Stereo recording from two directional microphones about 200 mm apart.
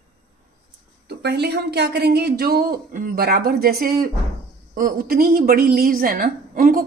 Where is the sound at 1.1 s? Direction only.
55° right (ahead or behind).